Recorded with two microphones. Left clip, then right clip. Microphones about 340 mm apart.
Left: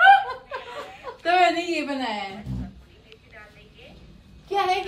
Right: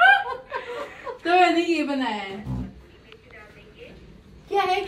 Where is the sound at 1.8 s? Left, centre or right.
Centre.